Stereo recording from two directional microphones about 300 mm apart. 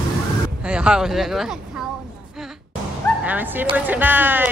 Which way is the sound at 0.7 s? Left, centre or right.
Centre.